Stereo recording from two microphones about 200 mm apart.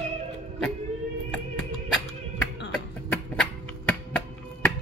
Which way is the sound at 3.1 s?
5° left (ahead or behind).